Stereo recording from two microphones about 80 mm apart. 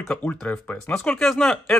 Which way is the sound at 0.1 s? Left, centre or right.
Centre.